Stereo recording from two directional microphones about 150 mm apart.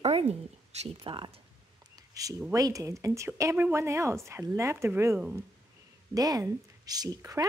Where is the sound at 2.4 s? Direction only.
20° right (ahead or behind).